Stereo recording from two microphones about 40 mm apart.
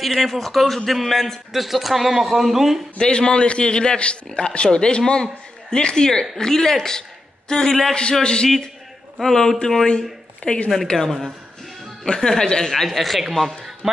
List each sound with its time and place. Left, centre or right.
0.2 s speech: centre
3.0 s a man's voice: left
7.9 s a man's voice: left
9.2 s a man's voice: centre
10.4 s speech: left
11.1 s speech: centre
12.1 s a man's voice: centre